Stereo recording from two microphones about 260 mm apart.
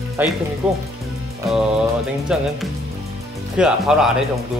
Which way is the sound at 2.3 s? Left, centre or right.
Centre.